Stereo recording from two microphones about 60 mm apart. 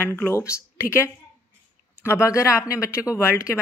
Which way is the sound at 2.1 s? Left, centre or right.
Left.